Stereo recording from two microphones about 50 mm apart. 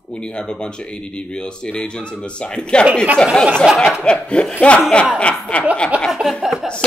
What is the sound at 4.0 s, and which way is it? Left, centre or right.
Speech, left.